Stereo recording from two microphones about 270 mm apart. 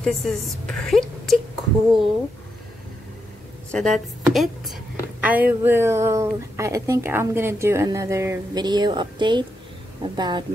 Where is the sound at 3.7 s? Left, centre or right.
Centre.